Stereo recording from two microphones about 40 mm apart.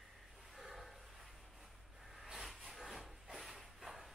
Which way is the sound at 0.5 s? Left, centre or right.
Centre.